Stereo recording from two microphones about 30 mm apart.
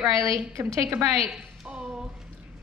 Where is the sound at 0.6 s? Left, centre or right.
Right.